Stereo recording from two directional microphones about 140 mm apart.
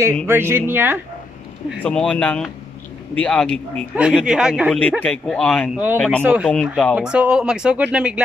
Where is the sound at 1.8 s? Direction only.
5° left (ahead or behind).